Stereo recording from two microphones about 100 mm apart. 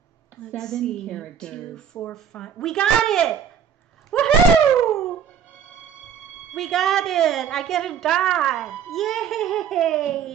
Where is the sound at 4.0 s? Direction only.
5° left (ahead or behind).